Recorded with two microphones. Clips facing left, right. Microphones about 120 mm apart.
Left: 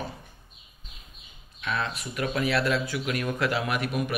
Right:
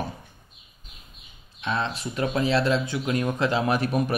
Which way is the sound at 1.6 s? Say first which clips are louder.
Right 3 dB; 30° right (ahead or behind).